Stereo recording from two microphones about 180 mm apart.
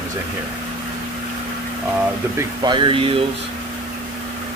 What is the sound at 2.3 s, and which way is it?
Speech, 25° right (ahead or behind).